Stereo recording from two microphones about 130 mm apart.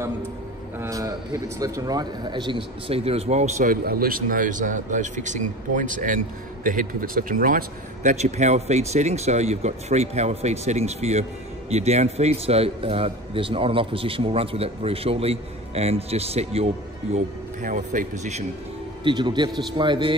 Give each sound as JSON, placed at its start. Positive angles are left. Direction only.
{"t": 0.7, "sound": "a man's voice", "side_deg": -25}
{"t": 17.6, "sound": "speech", "side_deg": -85}
{"t": 19.0, "sound": "a man's voice", "side_deg": -35}